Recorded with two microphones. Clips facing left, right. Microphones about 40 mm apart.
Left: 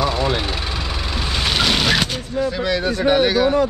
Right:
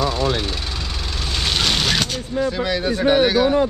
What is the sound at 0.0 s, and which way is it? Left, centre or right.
Vehicle, centre.